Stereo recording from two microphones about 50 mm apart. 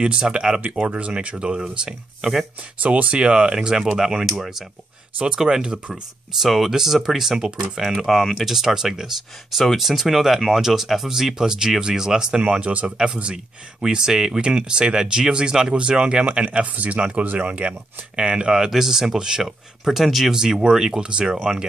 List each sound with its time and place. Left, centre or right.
0.0 s speech: centre
2.8 s speech: right